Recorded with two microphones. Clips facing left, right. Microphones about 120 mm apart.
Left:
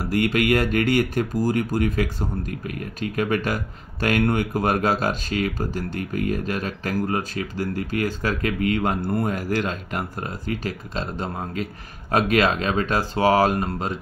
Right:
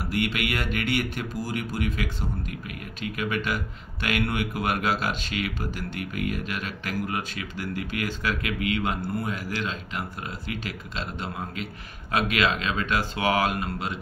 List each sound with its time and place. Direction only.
0.1 s speech: 40° left (ahead or behind)